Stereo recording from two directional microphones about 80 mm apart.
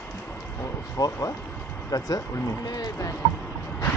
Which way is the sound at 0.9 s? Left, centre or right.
Left.